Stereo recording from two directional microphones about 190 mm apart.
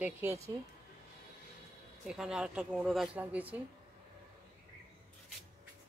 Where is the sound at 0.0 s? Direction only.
10° right (ahead or behind).